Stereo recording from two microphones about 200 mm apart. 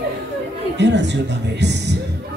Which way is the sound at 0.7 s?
60° right (ahead or behind).